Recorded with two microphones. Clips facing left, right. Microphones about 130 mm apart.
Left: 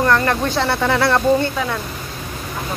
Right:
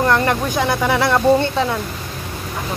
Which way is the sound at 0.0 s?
20° right (ahead or behind).